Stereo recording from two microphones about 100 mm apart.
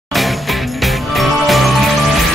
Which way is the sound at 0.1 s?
Centre (ahead or behind).